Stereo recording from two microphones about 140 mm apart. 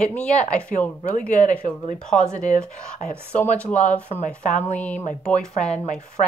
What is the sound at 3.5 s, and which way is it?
A woman's voice, 10° left (ahead or behind).